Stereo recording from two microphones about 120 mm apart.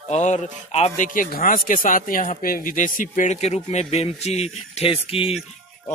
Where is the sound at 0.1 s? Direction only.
80° left.